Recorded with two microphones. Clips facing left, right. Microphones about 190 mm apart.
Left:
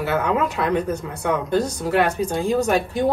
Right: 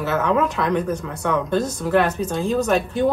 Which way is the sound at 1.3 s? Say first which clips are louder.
Even; 10° left (ahead or behind).